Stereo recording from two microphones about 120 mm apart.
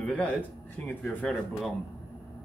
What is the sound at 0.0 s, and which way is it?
Speech, 10° left (ahead or behind).